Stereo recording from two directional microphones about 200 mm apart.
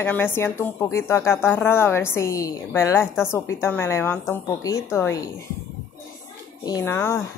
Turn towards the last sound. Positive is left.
turn(degrees=10)  # may be behind; listen again after turning